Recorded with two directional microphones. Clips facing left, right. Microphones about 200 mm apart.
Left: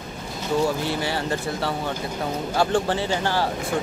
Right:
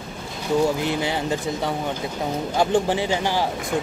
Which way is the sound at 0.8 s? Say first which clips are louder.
Right 2 dB; 20° right (ahead or behind).